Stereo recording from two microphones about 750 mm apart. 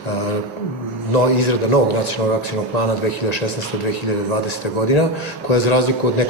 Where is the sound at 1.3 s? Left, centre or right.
Left.